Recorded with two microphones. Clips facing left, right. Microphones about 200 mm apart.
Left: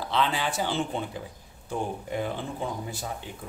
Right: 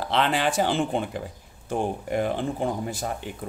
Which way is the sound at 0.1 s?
75° right (ahead or behind).